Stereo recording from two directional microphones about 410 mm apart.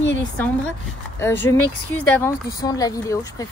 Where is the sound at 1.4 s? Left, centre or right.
Centre.